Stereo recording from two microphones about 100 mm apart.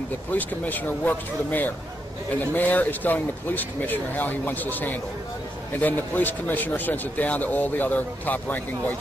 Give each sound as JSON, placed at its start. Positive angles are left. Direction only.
{"t": 0.3, "sound": "speech", "side_deg": 15}